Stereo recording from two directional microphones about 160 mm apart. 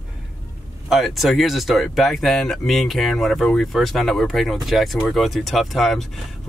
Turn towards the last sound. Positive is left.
turn(degrees=0)  # may be behind; listen again after turning